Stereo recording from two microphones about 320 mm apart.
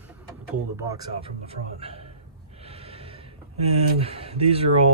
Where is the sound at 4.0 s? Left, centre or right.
Centre.